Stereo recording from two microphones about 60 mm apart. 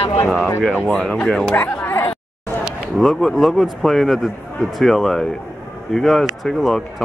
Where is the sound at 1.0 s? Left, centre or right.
Centre.